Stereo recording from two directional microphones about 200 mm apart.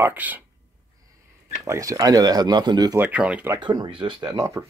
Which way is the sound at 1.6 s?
15° right (ahead or behind).